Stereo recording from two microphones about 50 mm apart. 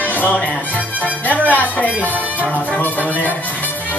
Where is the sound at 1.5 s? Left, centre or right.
Left.